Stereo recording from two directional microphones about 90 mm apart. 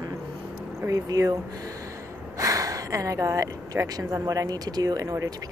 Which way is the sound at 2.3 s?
40° right (ahead or behind).